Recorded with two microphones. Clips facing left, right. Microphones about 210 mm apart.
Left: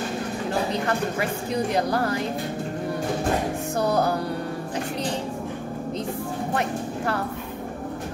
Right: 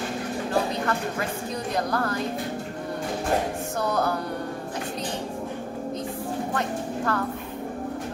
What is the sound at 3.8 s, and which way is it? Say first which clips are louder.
Music: left 4 dB; 35° left (ahead or behind).